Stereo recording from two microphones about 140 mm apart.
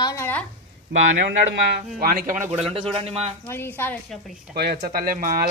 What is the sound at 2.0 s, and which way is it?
Speech, 85° right.